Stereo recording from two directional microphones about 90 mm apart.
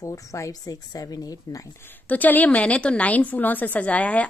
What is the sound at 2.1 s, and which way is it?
A woman's voice, 20° left (ahead or behind).